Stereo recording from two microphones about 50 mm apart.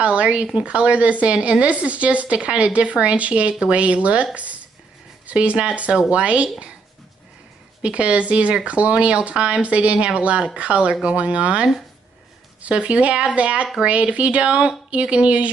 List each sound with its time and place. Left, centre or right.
0.0 s speech: right
7.8 s speech: right